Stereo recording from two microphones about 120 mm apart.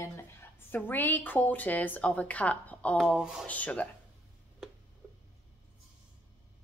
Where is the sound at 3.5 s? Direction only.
10° left (ahead or behind).